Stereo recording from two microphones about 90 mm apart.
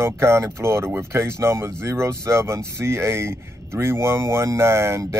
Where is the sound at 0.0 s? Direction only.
30° right (ahead or behind).